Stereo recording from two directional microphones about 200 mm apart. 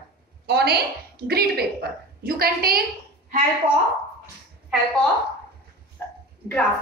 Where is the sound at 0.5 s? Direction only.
55° right (ahead or behind).